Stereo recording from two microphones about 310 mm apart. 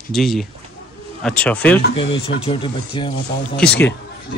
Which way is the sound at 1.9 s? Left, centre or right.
Centre.